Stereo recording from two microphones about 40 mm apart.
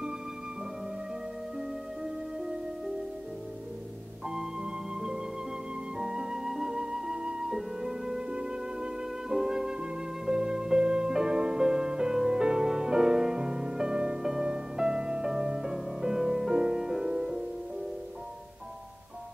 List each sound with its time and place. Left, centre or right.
4.3 s music: centre
5.9 s flute: centre
7.5 s music: centre